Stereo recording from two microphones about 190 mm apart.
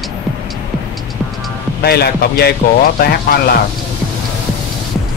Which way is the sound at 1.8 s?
55° left (ahead or behind).